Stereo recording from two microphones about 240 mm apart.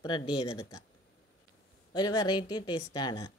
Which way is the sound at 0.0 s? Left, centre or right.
Centre.